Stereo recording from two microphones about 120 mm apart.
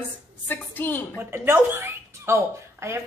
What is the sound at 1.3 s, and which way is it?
Speech, 20° right (ahead or behind).